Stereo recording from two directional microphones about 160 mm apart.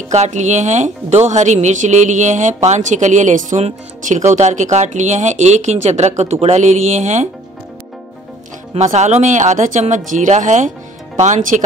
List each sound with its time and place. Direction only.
0.1 s a woman's voice: 45° right (ahead or behind)
8.7 s a woman's voice: 45° right (ahead or behind)